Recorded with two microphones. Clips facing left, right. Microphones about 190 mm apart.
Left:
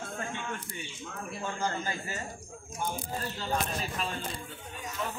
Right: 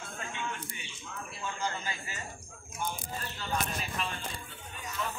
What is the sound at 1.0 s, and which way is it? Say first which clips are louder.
A man's voice: left 3 dB; 50° left (ahead or behind).